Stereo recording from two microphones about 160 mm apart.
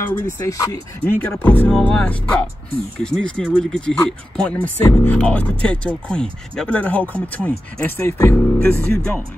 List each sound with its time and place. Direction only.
0.2 s speech: 20° left (ahead or behind)
1.0 s speech: 10° left (ahead or behind)